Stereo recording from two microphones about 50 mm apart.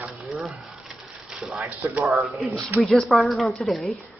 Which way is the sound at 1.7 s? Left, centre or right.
Right.